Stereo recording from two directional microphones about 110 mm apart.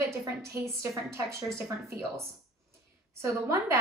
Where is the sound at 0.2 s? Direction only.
25° right (ahead or behind).